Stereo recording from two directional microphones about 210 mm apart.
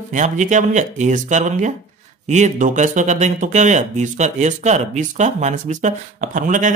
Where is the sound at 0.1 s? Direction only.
35° right (ahead or behind).